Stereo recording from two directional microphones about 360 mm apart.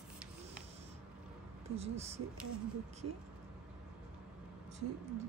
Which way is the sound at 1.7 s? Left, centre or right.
Centre.